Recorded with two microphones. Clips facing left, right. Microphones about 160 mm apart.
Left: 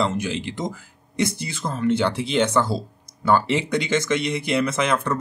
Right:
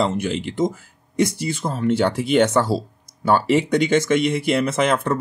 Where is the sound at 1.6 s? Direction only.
25° right (ahead or behind).